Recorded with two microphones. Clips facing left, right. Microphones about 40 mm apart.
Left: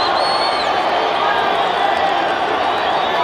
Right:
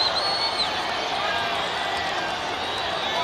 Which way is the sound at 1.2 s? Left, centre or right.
Left.